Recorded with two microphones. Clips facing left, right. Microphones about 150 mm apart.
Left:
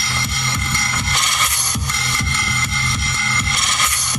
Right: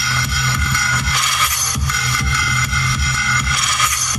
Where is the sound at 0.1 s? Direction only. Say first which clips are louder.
Right 2 dB; 25° left (ahead or behind).